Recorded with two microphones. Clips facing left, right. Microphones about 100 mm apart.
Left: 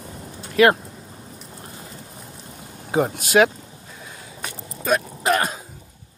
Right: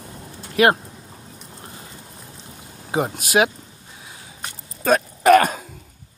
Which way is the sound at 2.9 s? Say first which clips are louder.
Left 2 dB; 25° right (ahead or behind).